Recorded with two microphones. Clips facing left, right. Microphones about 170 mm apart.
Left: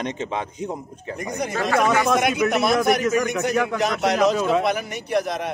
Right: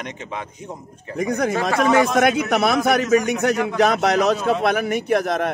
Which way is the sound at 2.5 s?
60° right (ahead or behind).